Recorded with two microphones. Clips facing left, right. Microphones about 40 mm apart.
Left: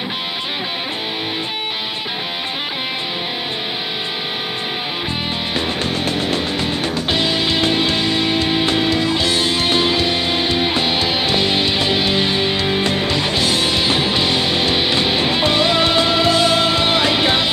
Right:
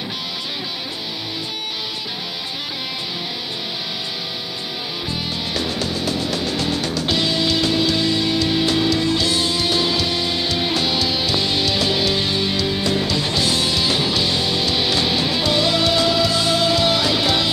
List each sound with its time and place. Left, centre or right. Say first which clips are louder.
5.5 s music: left 2 dB; left